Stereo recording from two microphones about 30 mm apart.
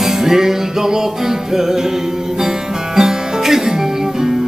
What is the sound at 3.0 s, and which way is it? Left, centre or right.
Music, centre.